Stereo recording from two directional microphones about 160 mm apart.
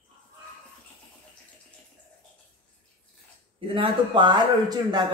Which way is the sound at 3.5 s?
30° right (ahead or behind).